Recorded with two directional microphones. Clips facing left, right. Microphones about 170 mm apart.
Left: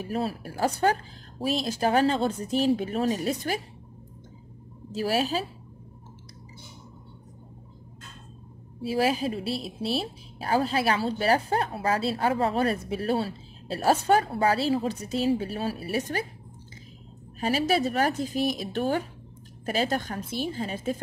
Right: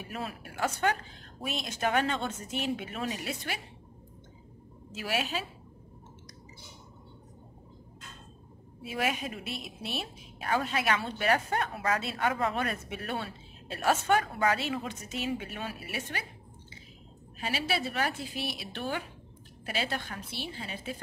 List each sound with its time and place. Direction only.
0.0 s a woman's voice: 35° left (ahead or behind)
4.9 s a woman's voice: 35° left (ahead or behind)
8.8 s a woman's voice: 30° left (ahead or behind)
17.4 s a woman's voice: 40° left (ahead or behind)